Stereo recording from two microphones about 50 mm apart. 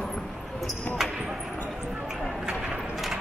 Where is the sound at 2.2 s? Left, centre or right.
Centre.